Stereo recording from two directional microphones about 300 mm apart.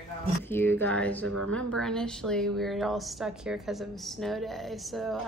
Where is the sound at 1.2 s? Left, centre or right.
Right.